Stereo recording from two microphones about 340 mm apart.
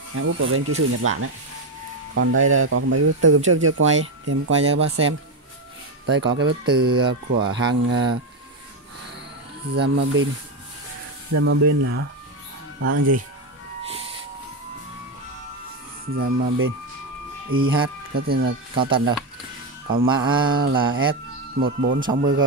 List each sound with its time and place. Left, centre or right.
0.1 s speech: right
9.8 s speech: right
11.3 s speech: right
16.2 s speech: right
20.1 s mantra: centre
20.9 s speech: right
22.0 s mantra: centre